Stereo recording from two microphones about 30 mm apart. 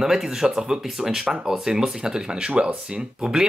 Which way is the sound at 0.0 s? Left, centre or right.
Centre.